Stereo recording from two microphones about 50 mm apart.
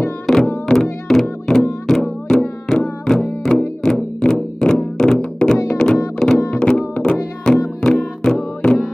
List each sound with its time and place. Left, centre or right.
0.3 s music: centre
0.7 s music: centre